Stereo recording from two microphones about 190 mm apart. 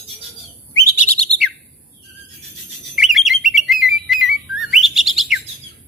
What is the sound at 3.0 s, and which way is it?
Bird, centre (ahead or behind).